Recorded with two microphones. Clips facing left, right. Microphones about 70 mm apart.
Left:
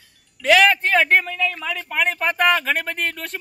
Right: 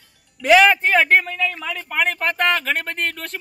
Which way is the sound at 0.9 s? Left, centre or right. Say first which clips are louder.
Right 1 dB; centre.